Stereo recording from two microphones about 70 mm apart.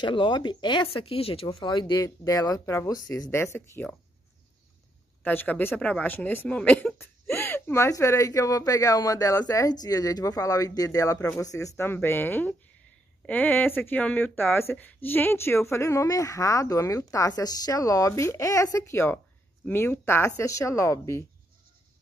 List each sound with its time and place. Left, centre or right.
0.0 s speech: left
2.0 s speech: left
5.2 s speech: left
7.2 s a sound: left
7.9 s speech: left
11.2 s speech: left
20.3 s speech: left